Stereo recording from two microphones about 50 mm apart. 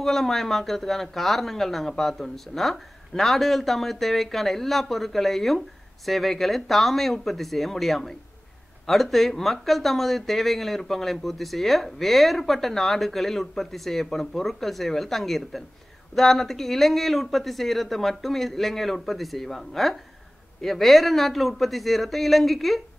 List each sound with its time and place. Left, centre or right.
0.0 s speech: centre